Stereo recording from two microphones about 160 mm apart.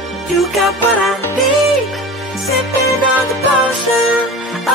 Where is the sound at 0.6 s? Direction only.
Centre (ahead or behind).